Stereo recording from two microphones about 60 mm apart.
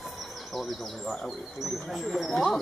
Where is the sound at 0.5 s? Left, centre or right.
Centre.